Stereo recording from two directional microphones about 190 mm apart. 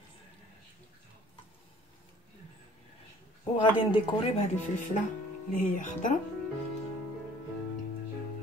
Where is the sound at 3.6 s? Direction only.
30° left (ahead or behind).